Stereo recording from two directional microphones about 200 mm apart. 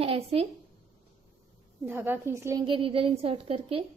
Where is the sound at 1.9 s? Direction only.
10° right (ahead or behind); by 3.8 s 30° right (ahead or behind).